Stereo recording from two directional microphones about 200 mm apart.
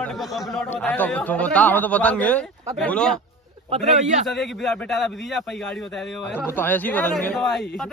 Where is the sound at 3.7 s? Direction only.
35° right (ahead or behind).